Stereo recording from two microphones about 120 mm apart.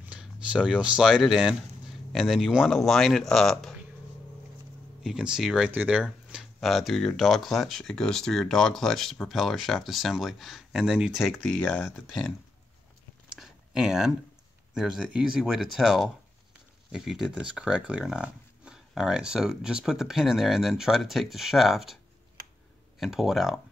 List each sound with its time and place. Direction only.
0.0 s speech: 10° right (ahead or behind)
5.0 s speech: 5° right (ahead or behind)
6.3 s speech: centre (ahead or behind)
11.5 s speech: 15° left (ahead or behind)
11.9 s speech: centre (ahead or behind)
13.3 s a sound: 5° right (ahead or behind)
14.7 s speech: 5° right (ahead or behind)
22.9 s speech: centre (ahead or behind)